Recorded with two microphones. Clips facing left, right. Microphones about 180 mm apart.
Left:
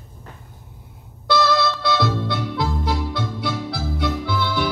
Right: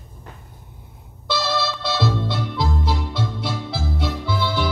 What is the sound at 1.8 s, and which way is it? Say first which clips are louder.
Music: left 1 dB; 55° left (ahead or behind).